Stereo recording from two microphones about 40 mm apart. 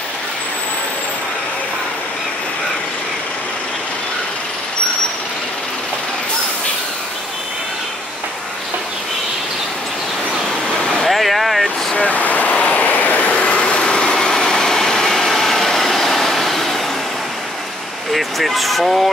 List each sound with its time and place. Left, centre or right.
11.1 s vehicle: centre
11.9 s vehicle: left
12.5 s vehicle: left
12.8 s vehicle: left; by 16.8 s centre
18.1 s a sound: centre